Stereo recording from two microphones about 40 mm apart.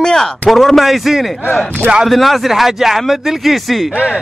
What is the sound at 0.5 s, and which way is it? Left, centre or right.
A man's voice, centre.